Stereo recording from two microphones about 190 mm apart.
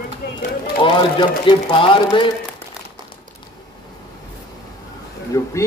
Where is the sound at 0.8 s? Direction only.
25° left (ahead or behind).